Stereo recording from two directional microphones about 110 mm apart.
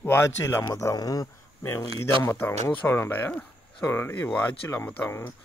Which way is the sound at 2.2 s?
20° left (ahead or behind).